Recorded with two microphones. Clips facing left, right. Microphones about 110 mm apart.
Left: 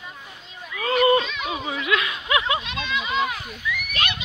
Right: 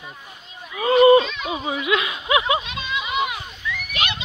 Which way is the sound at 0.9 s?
20° right (ahead or behind).